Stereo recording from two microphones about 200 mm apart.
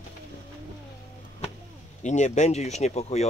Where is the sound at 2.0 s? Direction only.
35° left (ahead or behind).